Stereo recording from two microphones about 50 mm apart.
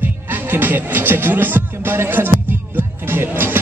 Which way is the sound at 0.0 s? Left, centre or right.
Right.